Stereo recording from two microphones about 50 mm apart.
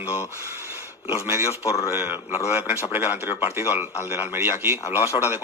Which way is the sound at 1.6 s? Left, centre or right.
Left.